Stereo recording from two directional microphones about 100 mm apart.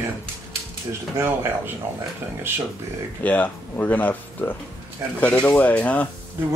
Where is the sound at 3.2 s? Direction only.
15° left (ahead or behind).